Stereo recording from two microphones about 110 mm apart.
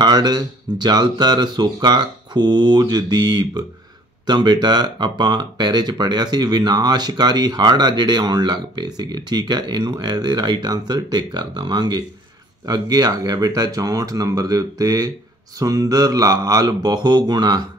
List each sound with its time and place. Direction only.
0.0 s speech: 40° right (ahead or behind)